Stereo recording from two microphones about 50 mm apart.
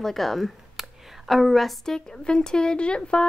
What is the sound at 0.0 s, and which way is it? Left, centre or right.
A woman's voice, centre.